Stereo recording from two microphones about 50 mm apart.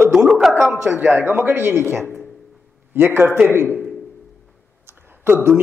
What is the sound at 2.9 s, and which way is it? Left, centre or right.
Speech, right.